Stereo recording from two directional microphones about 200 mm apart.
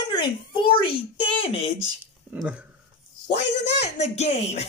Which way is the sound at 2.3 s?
10° right (ahead or behind).